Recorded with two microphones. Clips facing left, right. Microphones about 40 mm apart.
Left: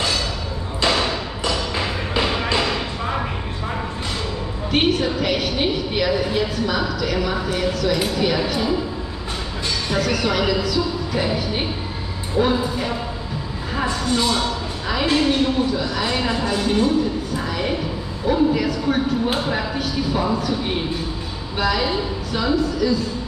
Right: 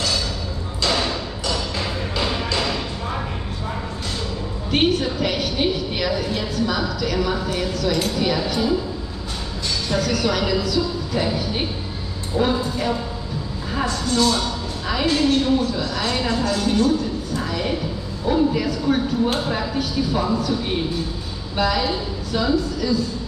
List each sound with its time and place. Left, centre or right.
0.8 s music: centre
4.6 s a woman's voice: centre
9.8 s a woman's voice: centre
13.8 s a woman's voice: left
17.4 s a sound: centre
18.2 s a woman's voice: centre
21.5 s a woman's voice: centre